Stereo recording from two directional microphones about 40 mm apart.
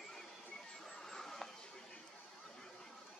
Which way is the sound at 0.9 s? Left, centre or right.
Centre.